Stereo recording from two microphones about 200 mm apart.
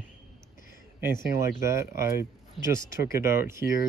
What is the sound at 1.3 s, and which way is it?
Speech, 15° right (ahead or behind).